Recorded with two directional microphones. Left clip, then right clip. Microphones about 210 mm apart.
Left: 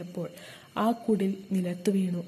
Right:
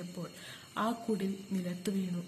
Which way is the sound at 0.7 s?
30° left (ahead or behind).